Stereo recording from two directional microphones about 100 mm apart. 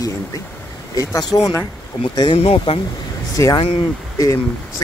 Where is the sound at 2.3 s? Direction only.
75° left (ahead or behind).